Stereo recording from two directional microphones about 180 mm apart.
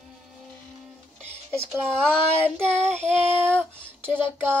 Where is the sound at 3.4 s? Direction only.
5° left (ahead or behind).